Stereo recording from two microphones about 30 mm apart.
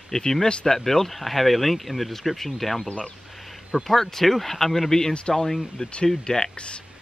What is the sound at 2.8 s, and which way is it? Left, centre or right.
Speech, left.